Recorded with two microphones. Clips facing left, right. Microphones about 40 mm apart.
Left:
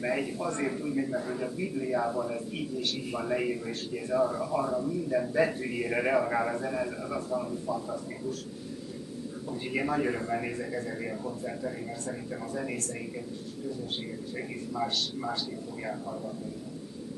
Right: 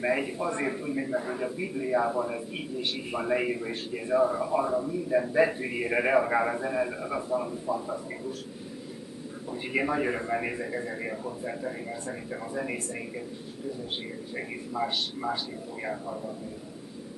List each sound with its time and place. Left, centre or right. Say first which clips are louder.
0.0 s a man's voice: right 3 dB; centre
9.5 s a man's voice: right 2 dB; centre
14.3 s a man's voice: right 2 dB; centre